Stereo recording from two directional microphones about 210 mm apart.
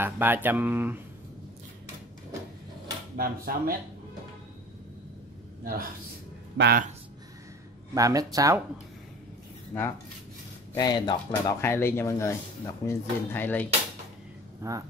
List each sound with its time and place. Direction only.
0.0 s speech: 10° right (ahead or behind)
3.2 s speech: 45° right (ahead or behind)
5.6 s a woman's voice: 45° right (ahead or behind)
7.9 s speech: 15° right (ahead or behind)
9.7 s speech: 10° left (ahead or behind)
14.6 s speech: 15° right (ahead or behind)